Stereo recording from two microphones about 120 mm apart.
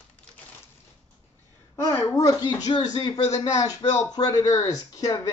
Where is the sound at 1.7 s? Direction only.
25° left (ahead or behind).